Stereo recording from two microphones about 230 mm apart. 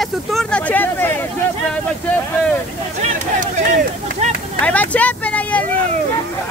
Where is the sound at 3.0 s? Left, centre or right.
Right.